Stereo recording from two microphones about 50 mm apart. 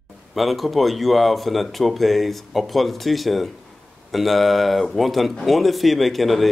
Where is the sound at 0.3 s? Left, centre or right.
Centre.